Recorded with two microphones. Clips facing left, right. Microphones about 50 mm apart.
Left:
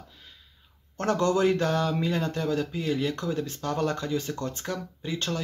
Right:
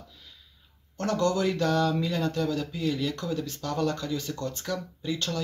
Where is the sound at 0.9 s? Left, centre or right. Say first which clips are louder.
Left 2 dB; left.